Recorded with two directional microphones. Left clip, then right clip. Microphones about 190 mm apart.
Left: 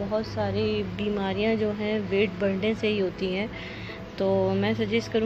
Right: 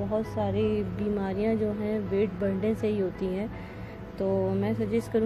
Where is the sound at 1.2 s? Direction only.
10° right (ahead or behind).